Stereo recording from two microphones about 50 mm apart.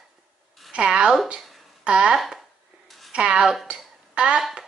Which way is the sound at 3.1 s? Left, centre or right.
Centre.